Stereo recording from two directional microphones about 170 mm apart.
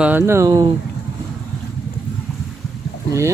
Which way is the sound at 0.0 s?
15° right (ahead or behind).